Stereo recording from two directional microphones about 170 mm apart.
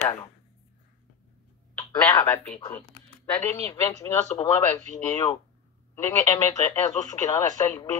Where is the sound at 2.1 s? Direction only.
20° left (ahead or behind).